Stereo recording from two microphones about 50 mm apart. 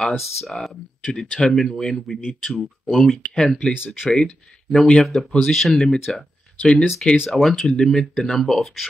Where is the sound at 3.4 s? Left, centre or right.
Centre.